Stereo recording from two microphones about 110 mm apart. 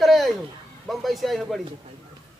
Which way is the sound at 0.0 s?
Centre (ahead or behind).